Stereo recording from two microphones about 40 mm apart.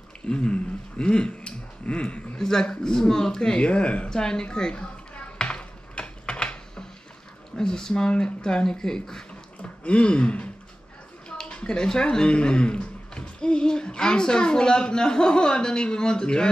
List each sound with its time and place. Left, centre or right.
0.3 s speech: left
2.3 s a man's voice: centre; by 4.1 s left
4.1 s a sound: centre
7.5 s speech: centre
9.6 s speech: left